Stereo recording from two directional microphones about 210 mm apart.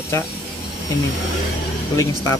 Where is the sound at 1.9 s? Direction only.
15° left (ahead or behind).